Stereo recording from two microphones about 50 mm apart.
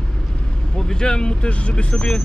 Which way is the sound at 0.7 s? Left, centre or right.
Centre.